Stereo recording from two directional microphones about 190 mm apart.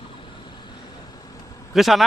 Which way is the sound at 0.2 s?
25° left (ahead or behind).